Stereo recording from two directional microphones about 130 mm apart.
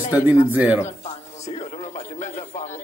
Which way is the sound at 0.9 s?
55° left (ahead or behind).